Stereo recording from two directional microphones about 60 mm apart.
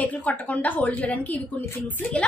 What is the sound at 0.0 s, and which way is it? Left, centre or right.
A woman's voice, left.